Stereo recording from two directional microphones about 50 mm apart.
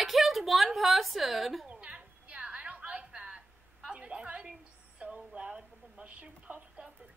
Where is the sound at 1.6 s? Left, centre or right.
Right.